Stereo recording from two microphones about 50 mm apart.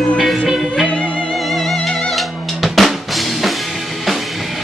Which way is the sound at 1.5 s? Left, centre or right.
Centre.